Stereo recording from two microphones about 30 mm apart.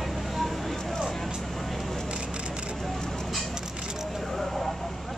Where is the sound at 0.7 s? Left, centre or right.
Centre.